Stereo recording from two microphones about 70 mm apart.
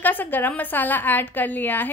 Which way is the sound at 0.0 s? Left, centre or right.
Left.